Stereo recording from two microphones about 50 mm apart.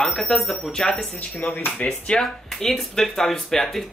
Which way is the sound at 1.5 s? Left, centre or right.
Left.